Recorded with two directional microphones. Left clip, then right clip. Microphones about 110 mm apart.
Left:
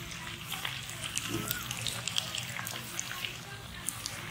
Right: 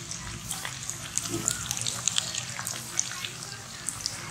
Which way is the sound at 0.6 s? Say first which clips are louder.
Right 1 dB; 5° right (ahead or behind).